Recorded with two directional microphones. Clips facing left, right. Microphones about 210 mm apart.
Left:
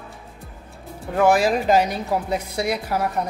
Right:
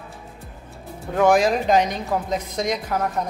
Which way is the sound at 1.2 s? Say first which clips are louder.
Even; 5° left (ahead or behind).